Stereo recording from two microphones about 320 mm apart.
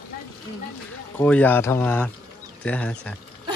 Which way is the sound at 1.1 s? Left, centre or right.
Centre.